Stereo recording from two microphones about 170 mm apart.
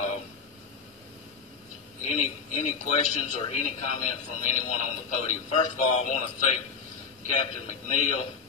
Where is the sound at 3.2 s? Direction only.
40° left (ahead or behind).